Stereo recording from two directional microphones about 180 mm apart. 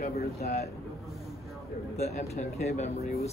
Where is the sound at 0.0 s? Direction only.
35° left (ahead or behind).